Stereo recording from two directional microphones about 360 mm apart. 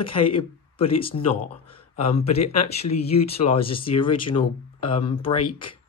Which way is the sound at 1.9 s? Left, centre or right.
Left.